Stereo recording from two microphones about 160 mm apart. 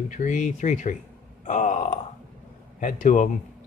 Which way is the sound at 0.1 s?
50° left (ahead or behind).